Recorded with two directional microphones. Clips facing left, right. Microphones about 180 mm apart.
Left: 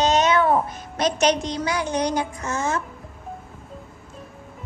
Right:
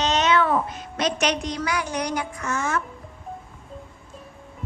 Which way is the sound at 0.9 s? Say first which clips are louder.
Left 4 dB; 40° left (ahead or behind).